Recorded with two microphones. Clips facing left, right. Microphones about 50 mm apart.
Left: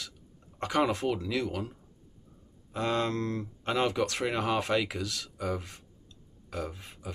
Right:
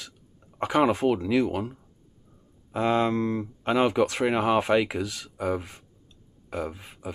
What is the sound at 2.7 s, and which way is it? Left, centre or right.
Speech, centre.